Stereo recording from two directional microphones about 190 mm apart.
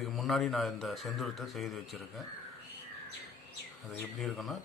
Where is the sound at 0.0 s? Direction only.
Centre (ahead or behind).